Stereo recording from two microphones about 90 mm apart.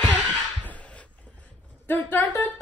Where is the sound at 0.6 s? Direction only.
15° left (ahead or behind).